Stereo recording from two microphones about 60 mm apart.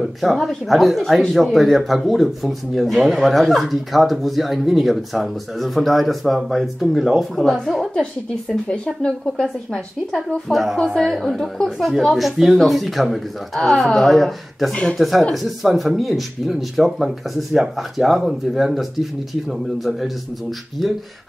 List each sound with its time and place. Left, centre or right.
0.0 s speech: centre
8.6 s speech: centre
10.1 s speech: centre
14.7 s speech: centre
15.0 s speech: centre